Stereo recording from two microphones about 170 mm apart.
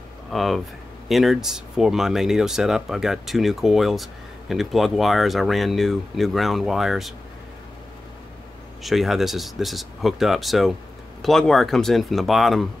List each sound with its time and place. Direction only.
0.3 s speech: centre (ahead or behind)
8.8 s speech: centre (ahead or behind)